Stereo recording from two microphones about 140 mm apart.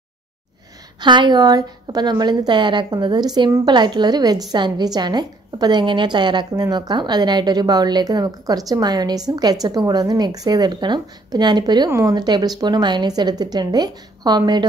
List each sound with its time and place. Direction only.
1.0 s a woman's voice: 35° right (ahead or behind)